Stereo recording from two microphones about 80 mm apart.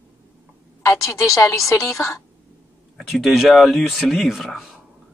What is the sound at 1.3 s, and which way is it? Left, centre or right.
Speech, left.